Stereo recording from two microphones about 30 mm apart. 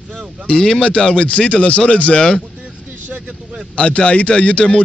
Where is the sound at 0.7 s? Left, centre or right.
Left.